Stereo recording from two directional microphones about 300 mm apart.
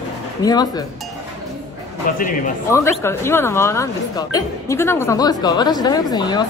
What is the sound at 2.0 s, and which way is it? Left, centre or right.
Speech, left.